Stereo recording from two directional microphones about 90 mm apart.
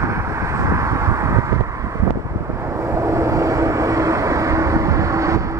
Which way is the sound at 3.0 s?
35° right (ahead or behind).